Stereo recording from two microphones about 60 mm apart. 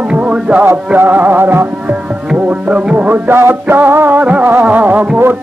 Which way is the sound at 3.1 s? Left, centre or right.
Right.